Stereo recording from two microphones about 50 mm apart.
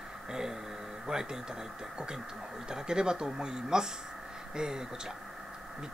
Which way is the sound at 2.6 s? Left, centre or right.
Centre.